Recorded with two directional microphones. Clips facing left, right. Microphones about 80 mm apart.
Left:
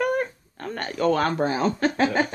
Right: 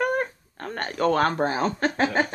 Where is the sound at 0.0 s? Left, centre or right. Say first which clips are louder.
Left 1 dB; right.